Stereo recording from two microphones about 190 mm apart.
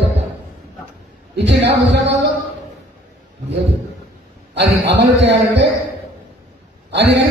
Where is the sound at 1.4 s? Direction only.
65° right (ahead or behind).